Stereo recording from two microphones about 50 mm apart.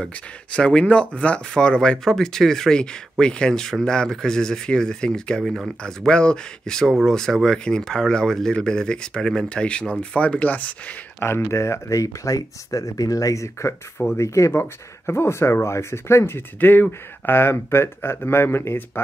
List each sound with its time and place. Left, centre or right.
0.0 s speech: left
11.1 s speech: left
14.6 s speech: left
16.5 s speech: left